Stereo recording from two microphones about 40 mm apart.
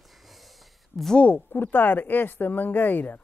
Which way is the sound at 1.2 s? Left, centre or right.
Left.